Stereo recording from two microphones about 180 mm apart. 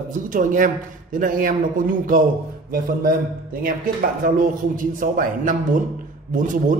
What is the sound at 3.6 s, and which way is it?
A man's voice, 50° right (ahead or behind).